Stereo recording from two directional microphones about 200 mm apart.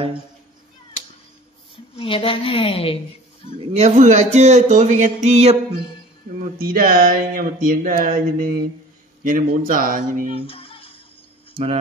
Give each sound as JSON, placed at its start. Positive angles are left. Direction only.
{"t": 2.0, "sound": "a woman's voice", "side_deg": 25}
{"t": 3.7, "sound": "speech", "side_deg": -35}
{"t": 6.6, "sound": "speech", "side_deg": -45}
{"t": 10.3, "sound": "music", "side_deg": 30}